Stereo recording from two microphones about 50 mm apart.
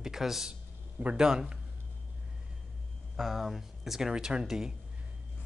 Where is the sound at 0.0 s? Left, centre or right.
Centre.